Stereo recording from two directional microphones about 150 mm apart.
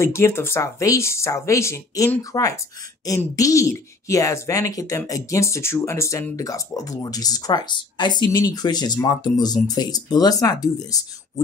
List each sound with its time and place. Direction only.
0.0 s speech: 20° left (ahead or behind)